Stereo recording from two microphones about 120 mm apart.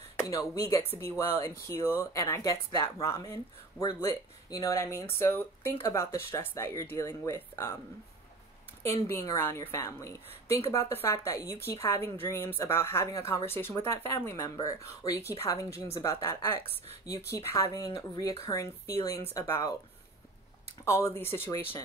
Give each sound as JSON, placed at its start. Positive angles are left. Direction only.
{"t": 0.3, "sound": "speech", "side_deg": 25}
{"t": 8.8, "sound": "speech", "side_deg": 25}
{"t": 20.8, "sound": "speech", "side_deg": 25}